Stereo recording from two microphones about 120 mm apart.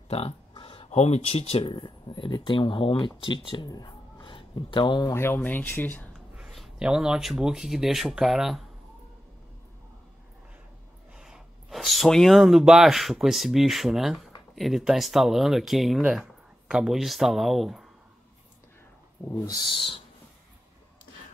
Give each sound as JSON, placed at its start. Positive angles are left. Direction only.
{"t": 0.1, "sound": "a sound", "side_deg": 50}
{"t": 0.8, "sound": "speech", "side_deg": 65}
{"t": 4.2, "sound": "a sound", "side_deg": 45}
{"t": 5.1, "sound": "speech", "side_deg": 20}
{"t": 6.3, "sound": "speech", "side_deg": 0}
{"t": 11.1, "sound": "speech", "side_deg": -5}
{"t": 19.4, "sound": "speech", "side_deg": 30}